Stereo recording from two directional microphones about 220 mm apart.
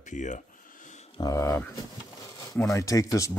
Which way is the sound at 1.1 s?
15° left (ahead or behind).